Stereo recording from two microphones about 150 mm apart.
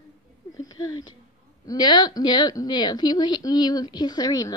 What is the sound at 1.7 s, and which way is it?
A woman's voice, 30° left (ahead or behind).